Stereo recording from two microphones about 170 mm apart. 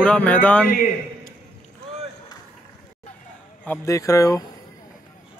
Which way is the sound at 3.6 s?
15° left (ahead or behind).